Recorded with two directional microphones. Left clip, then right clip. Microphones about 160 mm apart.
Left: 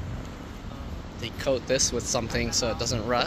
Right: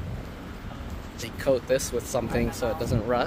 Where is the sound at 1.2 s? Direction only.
15° right (ahead or behind).